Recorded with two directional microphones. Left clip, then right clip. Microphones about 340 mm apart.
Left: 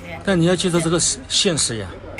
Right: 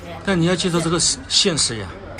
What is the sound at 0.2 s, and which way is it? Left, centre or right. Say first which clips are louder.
Speech: left 1 dB; centre.